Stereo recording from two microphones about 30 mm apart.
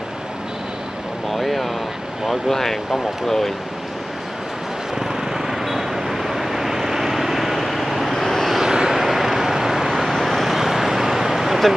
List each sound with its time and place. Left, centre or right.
1.3 s a sound: centre
2.2 s speech: centre
4.9 s vehicle: centre
8.1 s vehicle: centre
8.5 s vehicle: centre
8.9 s vehicle: centre
10.1 s vehicle: centre
10.5 s vehicle: centre